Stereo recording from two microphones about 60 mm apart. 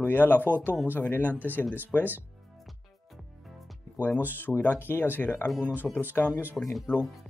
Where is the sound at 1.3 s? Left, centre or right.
Right.